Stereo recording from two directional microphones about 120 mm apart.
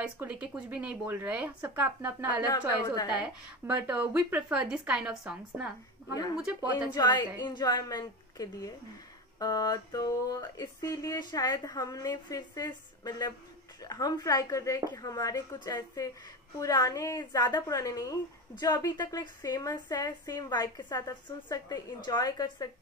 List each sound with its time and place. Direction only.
0.0 s speech: 10° right (ahead or behind)
6.9 s speech: 35° left (ahead or behind)